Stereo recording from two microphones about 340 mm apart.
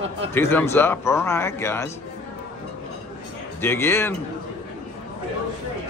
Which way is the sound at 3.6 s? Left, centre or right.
Centre.